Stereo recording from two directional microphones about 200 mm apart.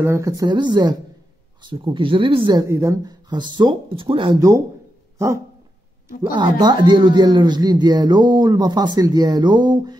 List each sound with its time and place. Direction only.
0.0 s speech: 15° right (ahead or behind)
6.3 s speech: 20° right (ahead or behind)